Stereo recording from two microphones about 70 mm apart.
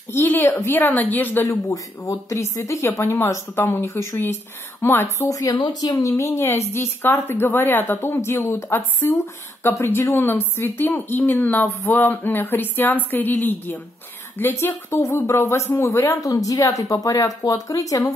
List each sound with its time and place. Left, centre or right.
0.1 s speech: left
1.7 s a woman's voice: left
5.2 s speech: left
6.2 s a woman's voice: left
16.2 s speech: left